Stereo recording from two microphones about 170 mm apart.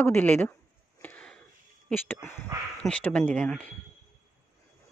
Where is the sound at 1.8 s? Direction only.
10° left (ahead or behind).